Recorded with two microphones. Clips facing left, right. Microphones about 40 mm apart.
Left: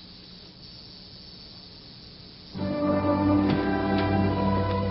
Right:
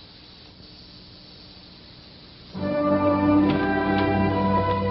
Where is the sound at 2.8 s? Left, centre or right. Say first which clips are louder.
Right 4 dB; centre.